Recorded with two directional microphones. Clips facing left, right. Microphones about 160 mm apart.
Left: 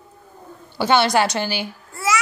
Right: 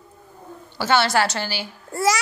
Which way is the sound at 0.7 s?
15° left (ahead or behind).